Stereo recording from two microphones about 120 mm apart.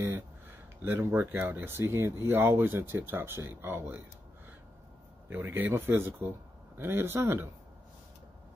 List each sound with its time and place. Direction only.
0.8 s speech: 20° right (ahead or behind)
5.3 s speech: 15° right (ahead or behind)